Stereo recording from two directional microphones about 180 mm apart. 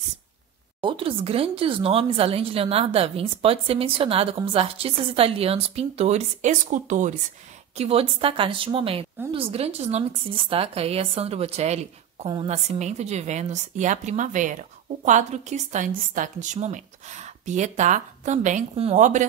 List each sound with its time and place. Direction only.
0.7 s a woman's voice: 30° right (ahead or behind)